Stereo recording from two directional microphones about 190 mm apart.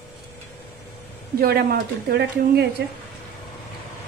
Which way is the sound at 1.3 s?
55° right (ahead or behind).